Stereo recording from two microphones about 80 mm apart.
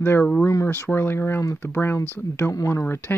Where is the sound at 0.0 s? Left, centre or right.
Left.